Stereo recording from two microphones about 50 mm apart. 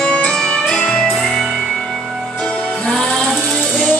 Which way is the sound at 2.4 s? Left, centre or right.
Centre.